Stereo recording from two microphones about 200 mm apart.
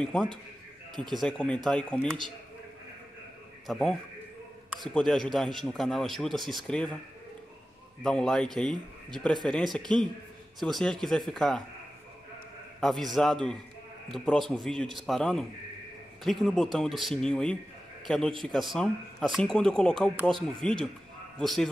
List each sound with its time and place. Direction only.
0.0 s speech: centre (ahead or behind)
0.9 s a man's voice: 20° right (ahead or behind)
1.2 s speech: 5° left (ahead or behind)
3.6 s speech: centre (ahead or behind)
8.0 s speech: 5° left (ahead or behind)
12.8 s speech: centre (ahead or behind)